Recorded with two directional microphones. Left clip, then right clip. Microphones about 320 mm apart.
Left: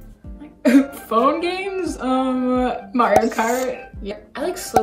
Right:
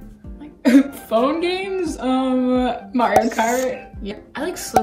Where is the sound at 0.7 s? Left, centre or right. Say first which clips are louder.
Right 2 dB; centre.